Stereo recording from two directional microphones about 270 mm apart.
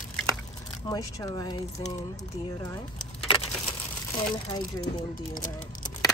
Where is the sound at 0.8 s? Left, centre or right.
Centre.